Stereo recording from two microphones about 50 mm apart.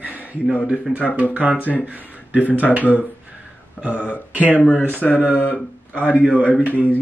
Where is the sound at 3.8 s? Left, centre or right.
Left.